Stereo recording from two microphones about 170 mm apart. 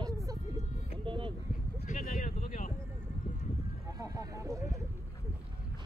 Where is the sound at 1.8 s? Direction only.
50° left (ahead or behind).